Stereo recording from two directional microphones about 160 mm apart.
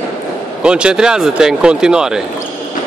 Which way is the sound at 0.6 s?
5° right (ahead or behind).